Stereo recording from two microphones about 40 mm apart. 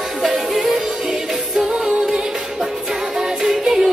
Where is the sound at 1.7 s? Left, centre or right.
Right.